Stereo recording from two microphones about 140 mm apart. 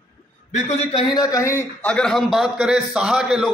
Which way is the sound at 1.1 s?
25° left (ahead or behind).